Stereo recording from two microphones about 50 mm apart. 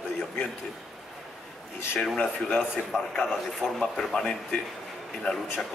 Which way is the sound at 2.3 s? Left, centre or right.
Centre.